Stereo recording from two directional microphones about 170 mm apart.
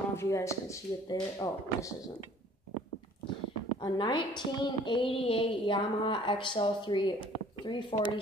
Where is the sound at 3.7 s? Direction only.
25° left (ahead or behind).